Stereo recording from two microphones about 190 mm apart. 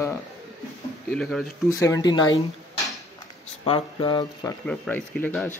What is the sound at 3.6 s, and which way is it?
Speech, 25° left (ahead or behind).